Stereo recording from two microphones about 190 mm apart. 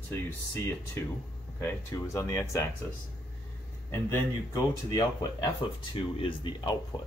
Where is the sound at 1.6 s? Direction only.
15° left (ahead or behind).